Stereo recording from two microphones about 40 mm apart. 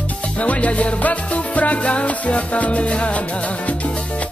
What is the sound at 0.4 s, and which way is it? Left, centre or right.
Music, left.